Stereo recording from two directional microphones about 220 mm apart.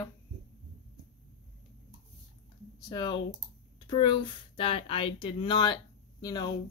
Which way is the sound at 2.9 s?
20° left (ahead or behind).